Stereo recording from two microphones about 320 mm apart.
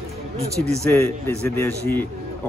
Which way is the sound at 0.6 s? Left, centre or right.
Centre.